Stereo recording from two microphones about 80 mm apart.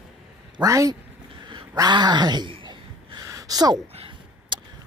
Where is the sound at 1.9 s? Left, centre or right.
Right.